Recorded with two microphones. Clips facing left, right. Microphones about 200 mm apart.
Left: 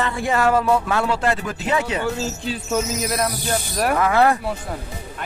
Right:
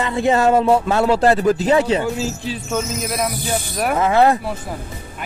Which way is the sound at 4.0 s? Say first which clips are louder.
Right 3 dB; 25° right (ahead or behind).